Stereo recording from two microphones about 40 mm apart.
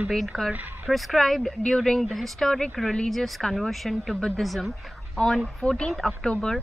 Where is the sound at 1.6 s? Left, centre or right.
Centre.